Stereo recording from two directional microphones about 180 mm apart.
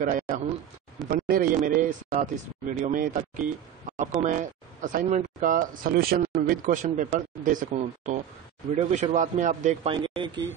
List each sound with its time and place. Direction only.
0.0 s a man's voice: 50° right (ahead or behind)
9.9 s speech: 25° right (ahead or behind)